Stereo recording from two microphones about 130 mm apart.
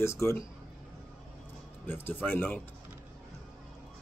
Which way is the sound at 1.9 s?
15° left (ahead or behind).